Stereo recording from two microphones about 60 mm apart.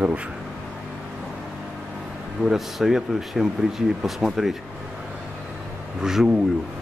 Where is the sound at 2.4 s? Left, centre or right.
Centre.